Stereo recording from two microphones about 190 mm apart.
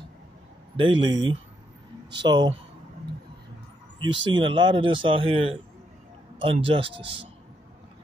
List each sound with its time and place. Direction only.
0.7 s speech: 25° right (ahead or behind)
4.0 s speech: 25° right (ahead or behind)